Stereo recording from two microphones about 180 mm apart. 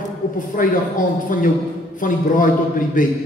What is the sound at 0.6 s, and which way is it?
Speech, 50° left (ahead or behind).